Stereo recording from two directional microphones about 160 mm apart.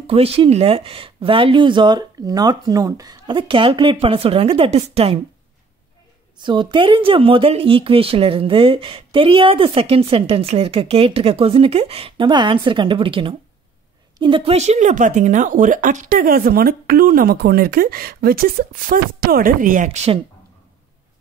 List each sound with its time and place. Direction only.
0.0 s speech: 40° right (ahead or behind)
6.3 s a woman's voice: 30° right (ahead or behind)